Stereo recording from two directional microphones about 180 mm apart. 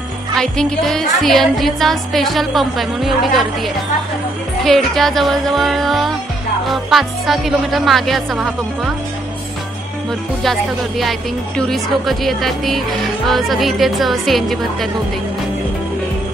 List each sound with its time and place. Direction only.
0.4 s speech: 5° left (ahead or behind)
10.4 s speech: centre (ahead or behind)